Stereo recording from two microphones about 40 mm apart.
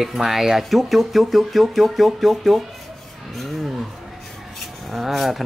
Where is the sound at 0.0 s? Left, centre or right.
Centre.